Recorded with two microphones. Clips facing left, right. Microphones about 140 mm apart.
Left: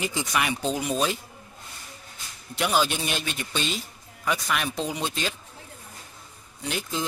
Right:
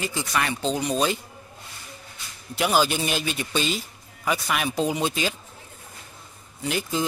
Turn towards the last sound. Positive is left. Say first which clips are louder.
# right 4 dB
turn(degrees=0)  # may be behind; listen again after turning